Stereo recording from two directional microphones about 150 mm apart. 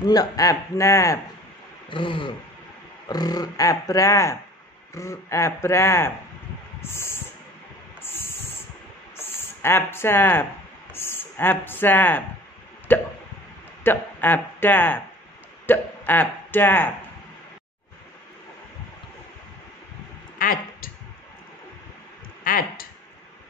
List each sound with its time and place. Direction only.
0.0 s speech: 25° left (ahead or behind)
1.9 s speech: 35° left (ahead or behind); by 7.2 s 15° left (ahead or behind)
8.0 s spray: 15° left (ahead or behind)
9.1 s a sound: 15° left (ahead or behind)
10.9 s speech: 15° left (ahead or behind)
20.3 s a sound: 70° left (ahead or behind)
22.4 s speech: 70° left (ahead or behind)